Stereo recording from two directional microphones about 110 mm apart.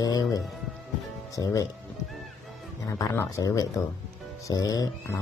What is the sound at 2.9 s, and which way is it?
Speech, 30° left (ahead or behind).